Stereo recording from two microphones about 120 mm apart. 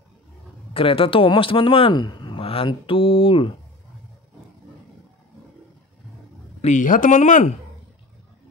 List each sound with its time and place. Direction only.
0.7 s speech: 50° left (ahead or behind)
6.6 s speech: 85° left